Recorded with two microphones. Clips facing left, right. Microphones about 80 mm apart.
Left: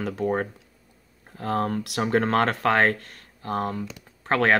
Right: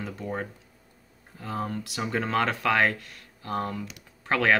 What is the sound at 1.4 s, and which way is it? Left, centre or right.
Speech, left.